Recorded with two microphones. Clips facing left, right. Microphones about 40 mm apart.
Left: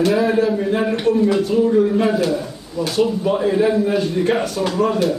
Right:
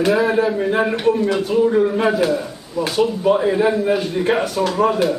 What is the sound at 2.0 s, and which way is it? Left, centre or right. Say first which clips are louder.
A man's voice: right 1 dB; centre.